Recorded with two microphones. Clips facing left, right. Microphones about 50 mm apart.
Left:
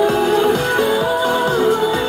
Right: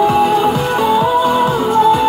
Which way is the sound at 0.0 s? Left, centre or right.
Centre.